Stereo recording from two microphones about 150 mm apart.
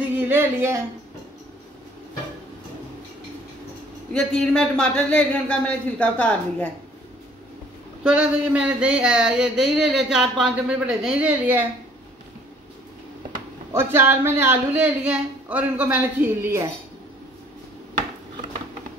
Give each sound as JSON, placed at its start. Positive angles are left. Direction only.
{"t": 0.1, "sound": "a sound", "side_deg": -15}
{"t": 4.1, "sound": "speech", "side_deg": 5}
{"t": 8.0, "sound": "a woman's voice", "side_deg": -5}
{"t": 13.7, "sound": "a woman's voice", "side_deg": -15}